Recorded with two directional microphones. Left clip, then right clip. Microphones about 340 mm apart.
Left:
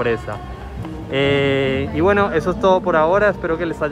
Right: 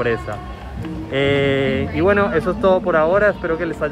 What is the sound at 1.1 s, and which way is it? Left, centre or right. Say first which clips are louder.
Speech: even; centre.